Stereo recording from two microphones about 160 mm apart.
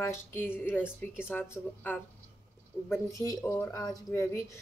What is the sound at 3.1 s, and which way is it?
Speech, 15° left (ahead or behind).